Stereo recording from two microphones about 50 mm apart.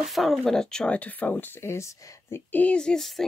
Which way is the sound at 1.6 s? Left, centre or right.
Left.